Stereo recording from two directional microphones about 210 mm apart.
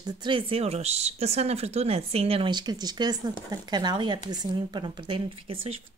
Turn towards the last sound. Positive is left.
turn(degrees=-25)  # may be behind; listen again after turning